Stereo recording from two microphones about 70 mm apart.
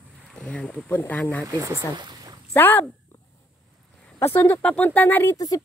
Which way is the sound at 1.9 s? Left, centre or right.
Right.